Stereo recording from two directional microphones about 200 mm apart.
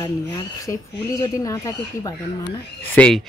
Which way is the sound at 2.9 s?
5° left (ahead or behind).